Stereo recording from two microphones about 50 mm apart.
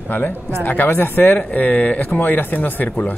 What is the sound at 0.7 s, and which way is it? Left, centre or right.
A man's voice, left.